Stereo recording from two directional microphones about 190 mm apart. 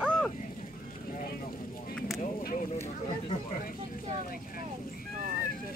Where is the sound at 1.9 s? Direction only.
Centre (ahead or behind).